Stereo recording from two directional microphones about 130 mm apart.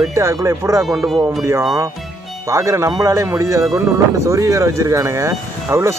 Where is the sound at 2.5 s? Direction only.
20° right (ahead or behind).